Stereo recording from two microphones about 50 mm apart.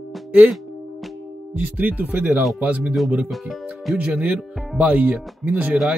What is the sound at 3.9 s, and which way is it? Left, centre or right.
Speech, right.